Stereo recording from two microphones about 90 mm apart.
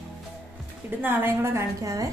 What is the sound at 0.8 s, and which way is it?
A woman's voice, 25° right (ahead or behind).